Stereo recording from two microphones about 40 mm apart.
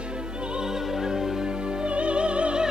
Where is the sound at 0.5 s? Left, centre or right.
Centre.